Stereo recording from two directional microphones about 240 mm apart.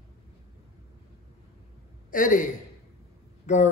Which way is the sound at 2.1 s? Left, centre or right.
Left.